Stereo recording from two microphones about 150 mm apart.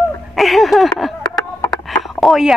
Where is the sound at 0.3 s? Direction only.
Centre (ahead or behind).